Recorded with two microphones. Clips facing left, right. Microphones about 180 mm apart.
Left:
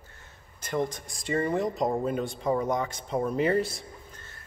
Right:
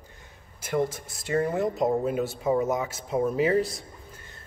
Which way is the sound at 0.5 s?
10° right (ahead or behind).